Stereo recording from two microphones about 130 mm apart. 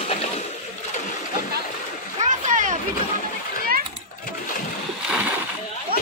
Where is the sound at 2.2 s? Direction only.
75° right (ahead or behind).